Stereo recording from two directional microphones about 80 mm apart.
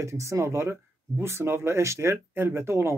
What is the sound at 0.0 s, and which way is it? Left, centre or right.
A man's voice, right.